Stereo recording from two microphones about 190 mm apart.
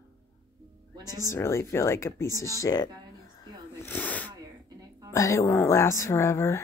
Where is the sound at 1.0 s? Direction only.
20° right (ahead or behind).